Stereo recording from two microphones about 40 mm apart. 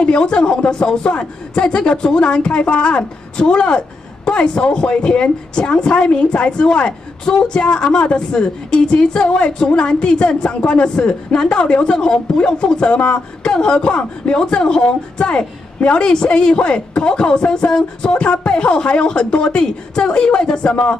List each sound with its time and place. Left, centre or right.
0.0 s a woman's voice: left